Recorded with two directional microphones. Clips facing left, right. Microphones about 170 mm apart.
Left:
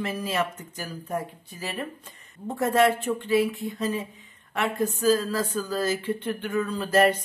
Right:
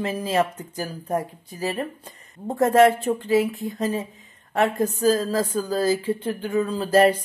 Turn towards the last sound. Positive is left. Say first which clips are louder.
# right 4 dB
turn(degrees=-35)  # may be behind; listen again after turning